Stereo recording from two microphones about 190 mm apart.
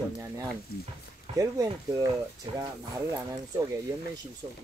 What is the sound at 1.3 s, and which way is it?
Speech, 15° right (ahead or behind).